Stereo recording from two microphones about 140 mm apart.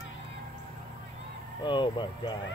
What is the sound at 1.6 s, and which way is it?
Speech, 35° left (ahead or behind).